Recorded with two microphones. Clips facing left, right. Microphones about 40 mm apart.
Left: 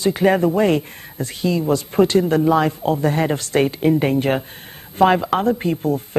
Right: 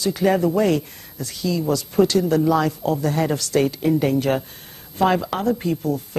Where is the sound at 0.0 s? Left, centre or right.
Left.